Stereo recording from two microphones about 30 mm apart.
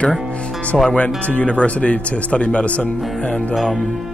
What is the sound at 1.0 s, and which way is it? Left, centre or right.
Speech, left.